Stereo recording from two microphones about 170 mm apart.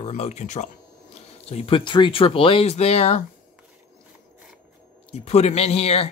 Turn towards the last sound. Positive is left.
turn(degrees=35)  # may be behind; listen again after turning